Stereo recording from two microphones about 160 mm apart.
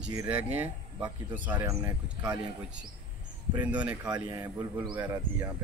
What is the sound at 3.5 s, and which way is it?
Speech, 10° right (ahead or behind).